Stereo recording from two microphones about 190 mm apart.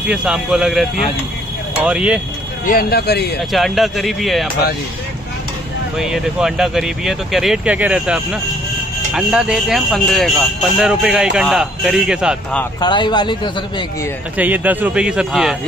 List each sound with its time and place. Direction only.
0.0 s speech: 5° right (ahead or behind)
2.6 s speech: 50° left (ahead or behind)
3.5 s speech: centre (ahead or behind)
5.9 s speech: 5° right (ahead or behind)
12.8 s a man's voice: 25° left (ahead or behind)
14.3 s speech: 10° right (ahead or behind)